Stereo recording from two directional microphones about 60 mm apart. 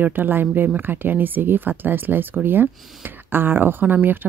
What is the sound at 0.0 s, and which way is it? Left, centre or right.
Speech, right.